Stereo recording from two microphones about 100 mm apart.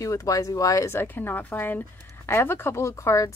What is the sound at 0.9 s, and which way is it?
Speech, 20° left (ahead or behind).